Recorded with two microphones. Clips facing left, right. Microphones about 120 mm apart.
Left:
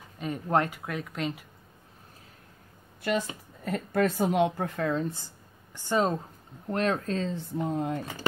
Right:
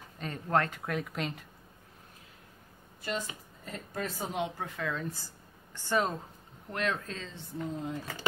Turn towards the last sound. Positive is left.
turn(degrees=65)  # may be behind; listen again after turning